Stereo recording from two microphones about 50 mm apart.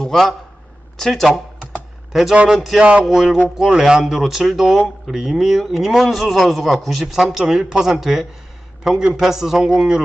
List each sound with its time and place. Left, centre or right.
0.0 s a sound: centre
0.9 s speech: centre
2.5 s a man's voice: centre
2.8 s speech: right
3.1 s speech: centre
6.0 s a man's voice: centre